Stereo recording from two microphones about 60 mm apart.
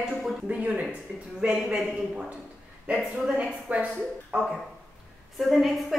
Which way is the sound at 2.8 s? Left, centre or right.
Right.